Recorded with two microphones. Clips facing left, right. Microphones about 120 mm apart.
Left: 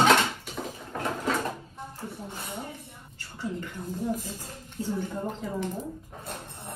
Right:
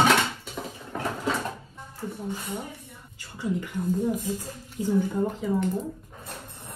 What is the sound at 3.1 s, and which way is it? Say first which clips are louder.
Speech: right 5 dB; 15° right (ahead or behind).